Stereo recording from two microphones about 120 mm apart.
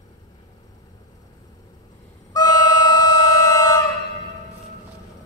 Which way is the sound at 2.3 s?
35° left (ahead or behind).